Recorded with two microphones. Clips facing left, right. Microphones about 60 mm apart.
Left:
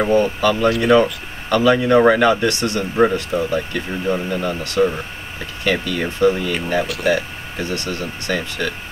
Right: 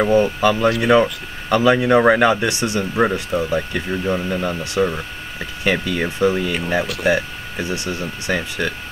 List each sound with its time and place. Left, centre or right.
0.1 s speech: centre
1.5 s speech: centre
6.3 s speech: centre
7.1 s speech: centre